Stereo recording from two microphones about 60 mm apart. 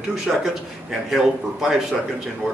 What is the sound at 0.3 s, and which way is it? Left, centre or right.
A man's voice, centre.